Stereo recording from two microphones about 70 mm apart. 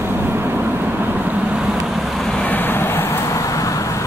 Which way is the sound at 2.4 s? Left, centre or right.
Left.